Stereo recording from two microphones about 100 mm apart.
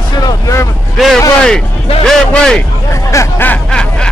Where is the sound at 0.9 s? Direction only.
Centre (ahead or behind).